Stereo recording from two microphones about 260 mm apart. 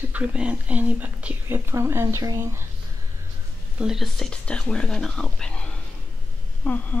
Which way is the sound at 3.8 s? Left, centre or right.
Centre.